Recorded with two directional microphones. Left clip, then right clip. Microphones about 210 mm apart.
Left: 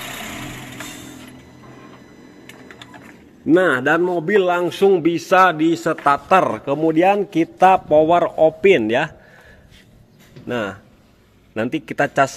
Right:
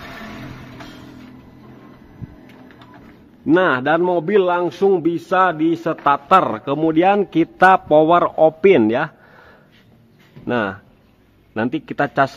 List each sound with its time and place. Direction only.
3.5 s a man's voice: 15° right (ahead or behind)
10.5 s a man's voice: 15° right (ahead or behind)